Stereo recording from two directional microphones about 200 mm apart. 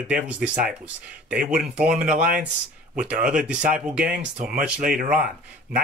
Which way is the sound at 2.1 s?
45° right (ahead or behind).